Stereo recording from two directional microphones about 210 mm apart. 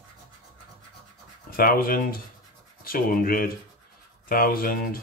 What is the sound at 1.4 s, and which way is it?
Speech, 45° left (ahead or behind).